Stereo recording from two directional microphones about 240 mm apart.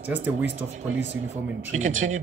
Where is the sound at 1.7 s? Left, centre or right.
Right.